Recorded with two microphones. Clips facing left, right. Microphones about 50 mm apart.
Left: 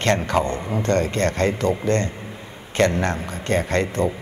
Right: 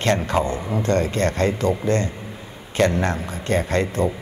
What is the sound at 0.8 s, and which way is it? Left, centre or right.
Speech, left.